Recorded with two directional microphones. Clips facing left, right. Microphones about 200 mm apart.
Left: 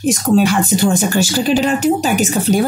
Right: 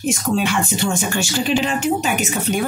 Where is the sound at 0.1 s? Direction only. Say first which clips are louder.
Left 7 dB; 40° left (ahead or behind).